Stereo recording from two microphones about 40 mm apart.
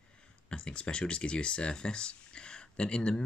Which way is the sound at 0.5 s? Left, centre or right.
Left.